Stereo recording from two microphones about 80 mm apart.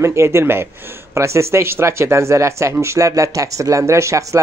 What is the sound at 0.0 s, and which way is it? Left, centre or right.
Speech, right.